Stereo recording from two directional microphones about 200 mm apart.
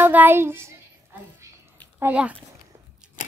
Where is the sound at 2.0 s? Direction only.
5° right (ahead or behind).